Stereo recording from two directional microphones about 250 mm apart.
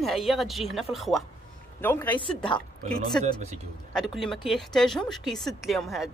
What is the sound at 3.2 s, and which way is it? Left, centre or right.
Speech, right.